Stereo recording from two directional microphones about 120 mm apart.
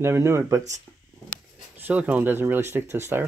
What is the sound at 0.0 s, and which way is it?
Speech, 20° right (ahead or behind).